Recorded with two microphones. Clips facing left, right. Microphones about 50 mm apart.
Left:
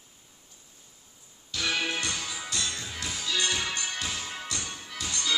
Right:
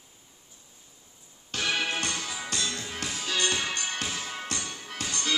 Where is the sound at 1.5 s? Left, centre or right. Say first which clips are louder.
Right 1 dB; right.